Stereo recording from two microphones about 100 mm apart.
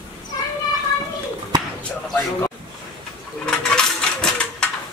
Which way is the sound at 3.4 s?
10° left (ahead or behind).